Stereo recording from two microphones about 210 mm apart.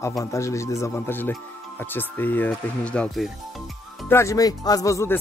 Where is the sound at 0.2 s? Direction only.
15° left (ahead or behind).